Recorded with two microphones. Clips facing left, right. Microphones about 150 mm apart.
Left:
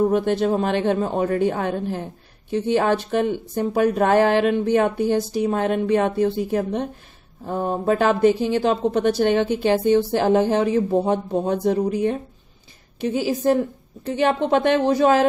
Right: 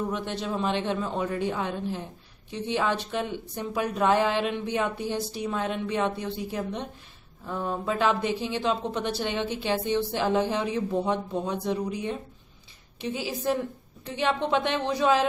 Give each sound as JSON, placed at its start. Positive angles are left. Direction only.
{"t": 0.0, "sound": "speech", "side_deg": 50}